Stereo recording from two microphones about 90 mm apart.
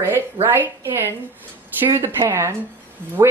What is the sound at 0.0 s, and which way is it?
A woman's voice, 25° right (ahead or behind).